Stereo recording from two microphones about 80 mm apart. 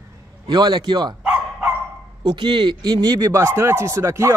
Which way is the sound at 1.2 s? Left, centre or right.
Centre.